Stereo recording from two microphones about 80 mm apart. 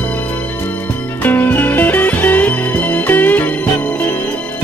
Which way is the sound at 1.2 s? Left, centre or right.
Left.